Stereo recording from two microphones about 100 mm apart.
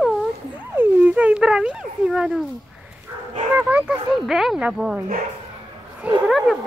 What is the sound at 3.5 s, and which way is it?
Speech, 20° right (ahead or behind).